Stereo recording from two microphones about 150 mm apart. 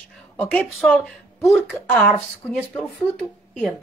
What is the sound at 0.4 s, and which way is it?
Speech, 10° left (ahead or behind).